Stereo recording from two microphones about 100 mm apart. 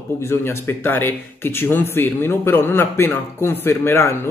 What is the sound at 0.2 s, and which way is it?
Speech, 25° left (ahead or behind).